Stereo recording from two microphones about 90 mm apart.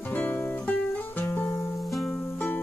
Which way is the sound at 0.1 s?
20° left (ahead or behind).